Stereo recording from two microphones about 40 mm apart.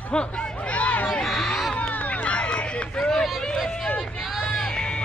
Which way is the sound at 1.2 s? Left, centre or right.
Centre.